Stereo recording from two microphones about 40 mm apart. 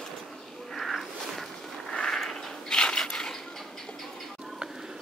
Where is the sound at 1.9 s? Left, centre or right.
Left.